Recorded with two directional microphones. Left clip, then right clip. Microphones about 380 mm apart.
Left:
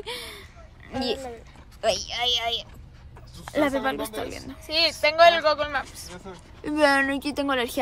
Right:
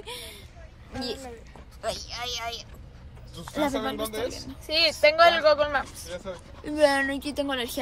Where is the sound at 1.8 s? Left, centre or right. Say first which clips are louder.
Left 8 dB; left.